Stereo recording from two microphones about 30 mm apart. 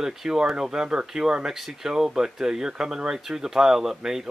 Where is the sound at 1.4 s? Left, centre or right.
Centre.